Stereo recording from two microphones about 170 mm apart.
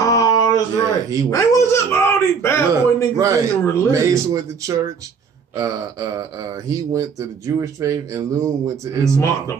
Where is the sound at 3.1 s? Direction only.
20° right (ahead or behind).